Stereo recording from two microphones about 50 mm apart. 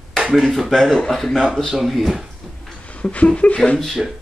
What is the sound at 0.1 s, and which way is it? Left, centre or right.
Speech, centre.